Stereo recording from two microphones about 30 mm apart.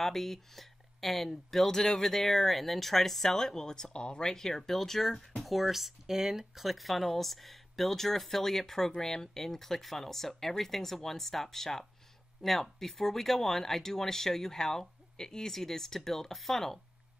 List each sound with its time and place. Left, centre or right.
0.0 s speech: centre
1.7 s speech: centre
4.3 s speech: centre
5.4 s speech: centre